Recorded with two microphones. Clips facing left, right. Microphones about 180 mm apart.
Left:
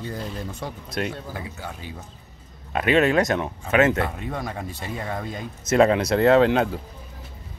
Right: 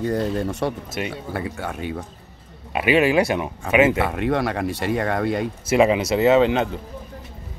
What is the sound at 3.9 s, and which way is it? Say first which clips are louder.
Speech: right 6 dB; 70° right (ahead or behind).